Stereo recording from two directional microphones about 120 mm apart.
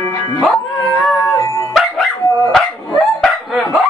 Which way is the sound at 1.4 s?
30° left (ahead or behind).